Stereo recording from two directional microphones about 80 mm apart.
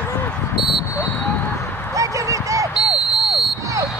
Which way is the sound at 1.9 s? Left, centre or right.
Right.